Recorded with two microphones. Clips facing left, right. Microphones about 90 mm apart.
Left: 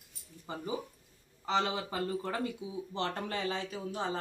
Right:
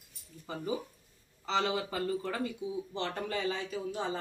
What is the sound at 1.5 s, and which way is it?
Speech, 25° left (ahead or behind).